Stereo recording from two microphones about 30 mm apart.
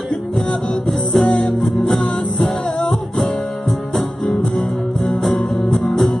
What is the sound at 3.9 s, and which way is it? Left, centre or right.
Music, centre.